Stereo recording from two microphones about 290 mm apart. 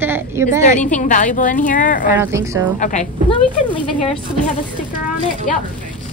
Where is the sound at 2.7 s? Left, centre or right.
Left.